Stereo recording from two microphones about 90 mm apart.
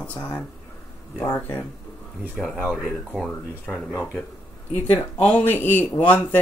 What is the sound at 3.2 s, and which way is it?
Speech, centre (ahead or behind).